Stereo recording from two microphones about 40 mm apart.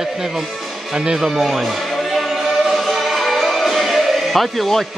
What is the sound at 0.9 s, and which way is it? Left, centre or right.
Speech, right.